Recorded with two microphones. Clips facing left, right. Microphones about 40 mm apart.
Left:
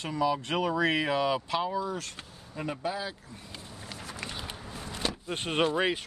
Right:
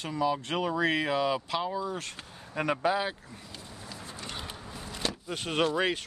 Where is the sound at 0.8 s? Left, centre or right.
Centre.